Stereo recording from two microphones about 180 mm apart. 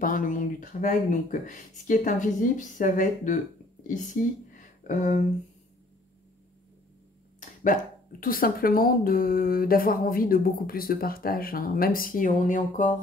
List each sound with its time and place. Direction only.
0.0 s speech: 50° left (ahead or behind)
7.3 s speech: 45° left (ahead or behind)